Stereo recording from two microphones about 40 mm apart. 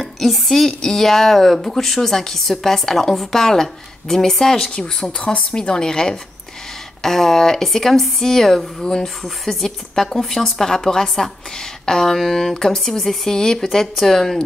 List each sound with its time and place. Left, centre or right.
0.0 s speech: centre
4.7 s speech: left; by 13.3 s centre
13.3 s speech: centre